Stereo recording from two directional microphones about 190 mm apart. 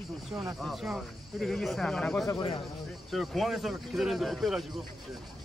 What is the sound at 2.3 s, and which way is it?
Speech, 25° left (ahead or behind).